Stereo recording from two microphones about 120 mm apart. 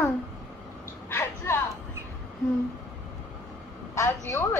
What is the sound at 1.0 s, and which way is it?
Speech, 20° left (ahead or behind).